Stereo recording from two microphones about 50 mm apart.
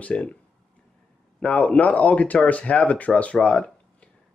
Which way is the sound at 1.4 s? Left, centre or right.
Left.